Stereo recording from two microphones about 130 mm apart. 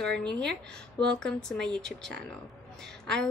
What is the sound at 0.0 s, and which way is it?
A woman's voice, 5° left (ahead or behind).